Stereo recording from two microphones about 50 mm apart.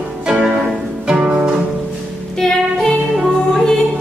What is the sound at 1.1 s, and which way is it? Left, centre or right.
Music, centre.